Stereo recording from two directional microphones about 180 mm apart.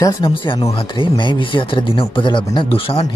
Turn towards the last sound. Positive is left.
turn(degrees=30)  # may be behind; listen again after turning